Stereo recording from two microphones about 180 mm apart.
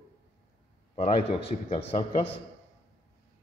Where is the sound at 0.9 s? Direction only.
30° left (ahead or behind).